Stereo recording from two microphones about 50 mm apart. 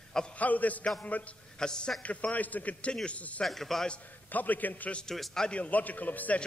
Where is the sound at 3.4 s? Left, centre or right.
Centre.